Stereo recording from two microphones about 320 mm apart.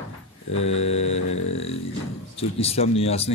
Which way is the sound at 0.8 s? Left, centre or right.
Centre.